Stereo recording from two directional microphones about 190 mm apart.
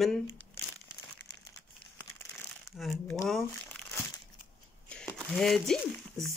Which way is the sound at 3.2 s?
Centre (ahead or behind).